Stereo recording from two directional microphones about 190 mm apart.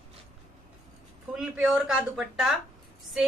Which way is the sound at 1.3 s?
Centre (ahead or behind).